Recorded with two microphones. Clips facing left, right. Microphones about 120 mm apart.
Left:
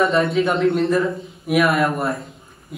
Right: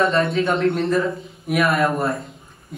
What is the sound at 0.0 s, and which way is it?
Speech, centre (ahead or behind).